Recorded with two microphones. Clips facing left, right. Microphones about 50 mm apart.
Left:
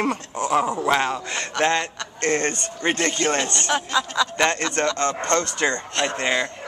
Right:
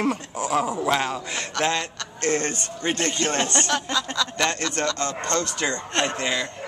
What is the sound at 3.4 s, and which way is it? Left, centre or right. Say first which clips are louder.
Speech: right 1 dB; centre.